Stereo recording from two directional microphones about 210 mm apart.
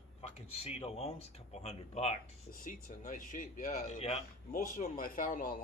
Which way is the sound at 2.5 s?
40° left (ahead or behind).